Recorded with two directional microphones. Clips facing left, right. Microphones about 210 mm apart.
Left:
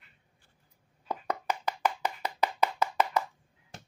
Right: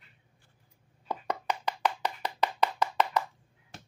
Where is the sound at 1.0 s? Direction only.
5° left (ahead or behind).